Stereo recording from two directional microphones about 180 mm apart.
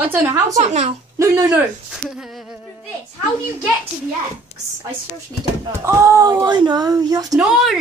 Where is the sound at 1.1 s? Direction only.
15° right (ahead or behind).